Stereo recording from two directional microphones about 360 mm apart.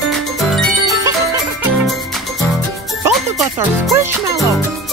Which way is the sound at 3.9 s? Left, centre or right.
Centre.